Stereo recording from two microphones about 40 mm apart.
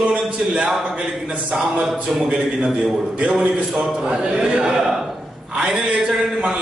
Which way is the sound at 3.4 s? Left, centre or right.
Right.